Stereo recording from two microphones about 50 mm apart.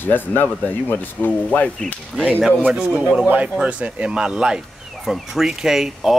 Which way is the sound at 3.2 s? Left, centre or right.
Right.